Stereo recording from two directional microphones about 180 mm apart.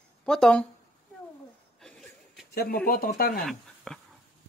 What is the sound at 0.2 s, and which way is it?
Speech, 5° left (ahead or behind).